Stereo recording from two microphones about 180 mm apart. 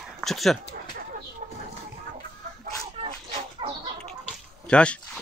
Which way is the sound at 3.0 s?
30° right (ahead or behind).